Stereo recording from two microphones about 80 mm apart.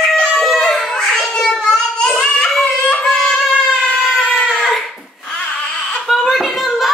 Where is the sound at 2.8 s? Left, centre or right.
Centre.